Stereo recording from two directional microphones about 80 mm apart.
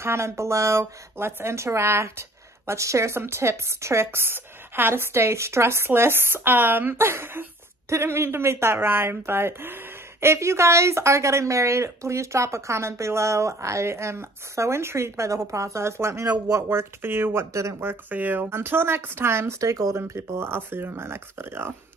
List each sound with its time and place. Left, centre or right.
0.0 s speech: right
16.3 s speech: right
16.6 s speech: right